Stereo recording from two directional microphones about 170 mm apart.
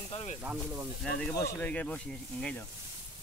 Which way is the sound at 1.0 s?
5° left (ahead or behind).